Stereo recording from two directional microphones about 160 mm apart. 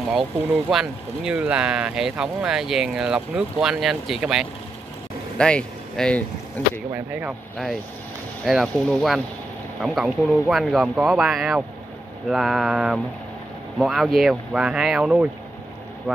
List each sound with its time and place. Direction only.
0.1 s speech: centre (ahead or behind)
6.9 s speech: 10° right (ahead or behind)
8.5 s speech: centre (ahead or behind)